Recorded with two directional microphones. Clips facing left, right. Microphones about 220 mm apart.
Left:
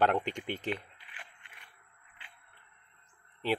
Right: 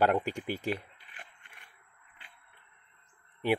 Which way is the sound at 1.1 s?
45° right (ahead or behind).